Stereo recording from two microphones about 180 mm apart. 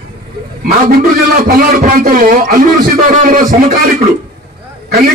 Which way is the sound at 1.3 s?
55° right (ahead or behind).